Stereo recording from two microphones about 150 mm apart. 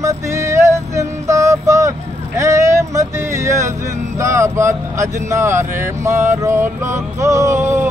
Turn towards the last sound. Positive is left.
turn(degrees=-15)  # may be behind; listen again after turning